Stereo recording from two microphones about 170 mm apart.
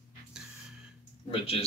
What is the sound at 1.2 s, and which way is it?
Speech, 35° left (ahead or behind).